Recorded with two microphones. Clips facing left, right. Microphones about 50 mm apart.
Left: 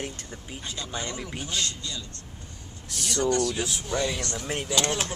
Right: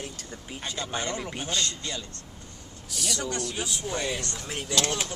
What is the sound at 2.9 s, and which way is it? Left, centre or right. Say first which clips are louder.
Speech: right 1 dB; left.